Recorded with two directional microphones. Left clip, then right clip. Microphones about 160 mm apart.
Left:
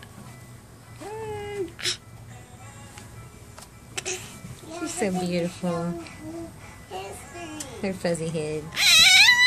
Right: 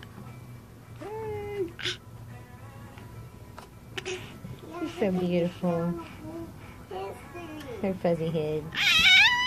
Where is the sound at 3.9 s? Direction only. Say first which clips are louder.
Left 3 dB; 15° left (ahead or behind).